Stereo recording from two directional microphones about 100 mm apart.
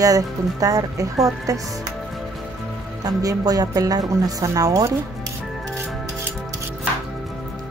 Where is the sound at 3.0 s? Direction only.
40° right (ahead or behind).